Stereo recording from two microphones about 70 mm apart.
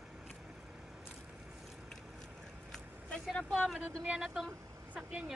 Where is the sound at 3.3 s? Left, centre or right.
Centre.